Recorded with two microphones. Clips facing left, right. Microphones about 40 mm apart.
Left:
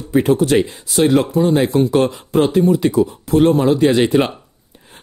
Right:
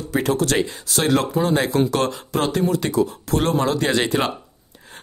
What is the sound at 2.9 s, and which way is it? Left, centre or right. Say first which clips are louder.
Speech: left 4 dB; left.